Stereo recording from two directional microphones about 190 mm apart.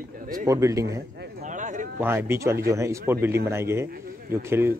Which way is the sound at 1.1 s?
60° right (ahead or behind).